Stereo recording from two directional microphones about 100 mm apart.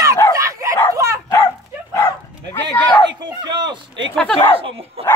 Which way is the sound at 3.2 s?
45° right (ahead or behind).